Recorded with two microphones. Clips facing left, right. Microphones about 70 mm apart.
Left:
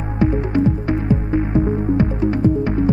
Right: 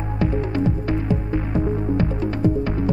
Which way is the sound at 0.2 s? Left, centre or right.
Left.